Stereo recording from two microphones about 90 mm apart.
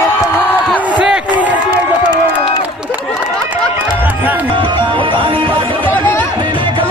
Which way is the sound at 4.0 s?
20° right (ahead or behind).